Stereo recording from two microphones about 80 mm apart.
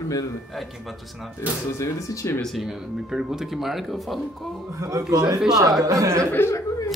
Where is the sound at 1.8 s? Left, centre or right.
Left.